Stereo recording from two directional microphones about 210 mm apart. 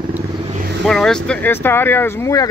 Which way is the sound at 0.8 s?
Centre (ahead or behind).